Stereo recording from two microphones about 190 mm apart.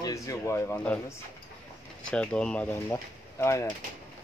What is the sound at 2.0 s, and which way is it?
Speech, 5° left (ahead or behind).